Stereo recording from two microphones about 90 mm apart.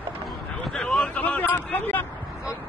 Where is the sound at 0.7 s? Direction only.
5° left (ahead or behind); by 2.0 s 20° left (ahead or behind).